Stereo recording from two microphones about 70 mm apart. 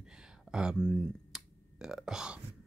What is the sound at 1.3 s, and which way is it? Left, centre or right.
Finger snapping, centre.